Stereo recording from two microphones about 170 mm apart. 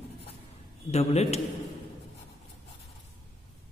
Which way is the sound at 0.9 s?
40° left (ahead or behind).